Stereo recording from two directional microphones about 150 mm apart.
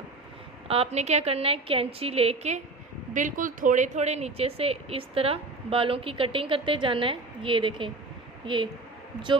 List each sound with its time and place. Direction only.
0.7 s speech: 45° right (ahead or behind)
3.1 s speech: 60° right (ahead or behind); by 7.9 s 35° right (ahead or behind)